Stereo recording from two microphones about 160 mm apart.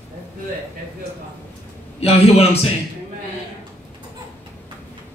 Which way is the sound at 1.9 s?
40° left (ahead or behind).